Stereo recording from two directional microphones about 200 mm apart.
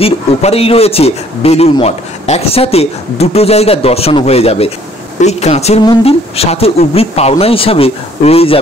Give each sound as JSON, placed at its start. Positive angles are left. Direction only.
{"t": 0.0, "sound": "speech", "side_deg": 30}